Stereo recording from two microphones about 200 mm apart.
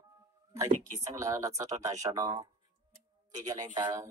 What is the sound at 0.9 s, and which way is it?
Speech, 15° right (ahead or behind).